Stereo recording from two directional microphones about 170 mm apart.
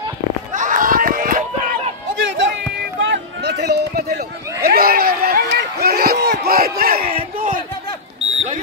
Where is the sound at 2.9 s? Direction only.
90° right; by 7.0 s 60° right (ahead or behind).